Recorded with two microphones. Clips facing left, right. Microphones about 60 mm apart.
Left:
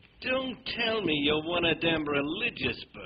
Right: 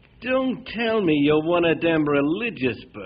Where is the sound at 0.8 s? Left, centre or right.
Right.